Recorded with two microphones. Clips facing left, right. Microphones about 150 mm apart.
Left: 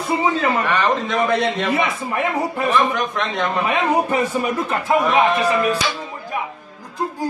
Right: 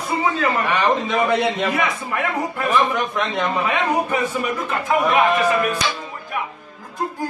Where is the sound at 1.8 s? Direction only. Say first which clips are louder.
Left 2 dB; 25° left (ahead or behind).